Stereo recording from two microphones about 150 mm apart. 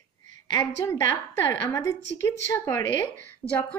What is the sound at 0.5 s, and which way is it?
A woman's voice, 20° left (ahead or behind).